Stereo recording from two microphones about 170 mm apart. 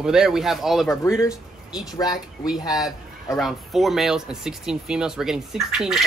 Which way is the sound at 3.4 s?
Centre (ahead or behind).